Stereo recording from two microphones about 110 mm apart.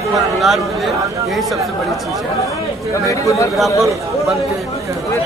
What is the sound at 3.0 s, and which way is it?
Speech, 30° left (ahead or behind).